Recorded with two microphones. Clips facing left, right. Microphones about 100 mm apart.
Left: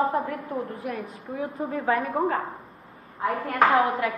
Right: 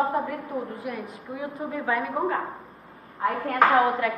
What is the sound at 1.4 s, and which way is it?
Speech, 30° left (ahead or behind).